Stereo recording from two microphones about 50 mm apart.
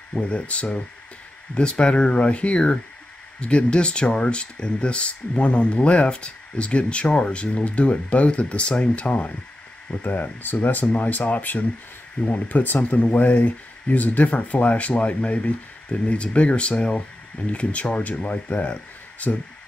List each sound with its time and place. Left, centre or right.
0.1 s speech: left